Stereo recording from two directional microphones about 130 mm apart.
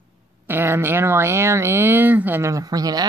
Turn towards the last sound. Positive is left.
turn(degrees=-30)  # may be behind; listen again after turning